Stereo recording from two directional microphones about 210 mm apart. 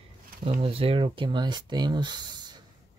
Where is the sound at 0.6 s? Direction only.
25° right (ahead or behind).